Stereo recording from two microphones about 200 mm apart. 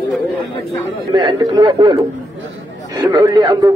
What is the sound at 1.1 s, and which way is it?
A man's voice, 25° right (ahead or behind).